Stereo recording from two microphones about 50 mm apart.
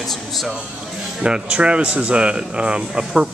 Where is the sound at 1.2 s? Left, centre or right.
Right.